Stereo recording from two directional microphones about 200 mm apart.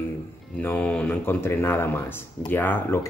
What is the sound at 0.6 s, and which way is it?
Speech, 10° left (ahead or behind).